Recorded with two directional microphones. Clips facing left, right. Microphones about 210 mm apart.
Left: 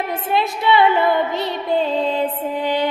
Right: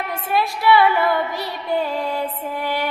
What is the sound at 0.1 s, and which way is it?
Music, 20° left (ahead or behind).